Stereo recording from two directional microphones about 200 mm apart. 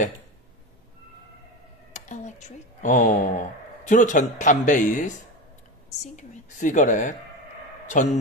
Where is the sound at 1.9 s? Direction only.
35° left (ahead or behind).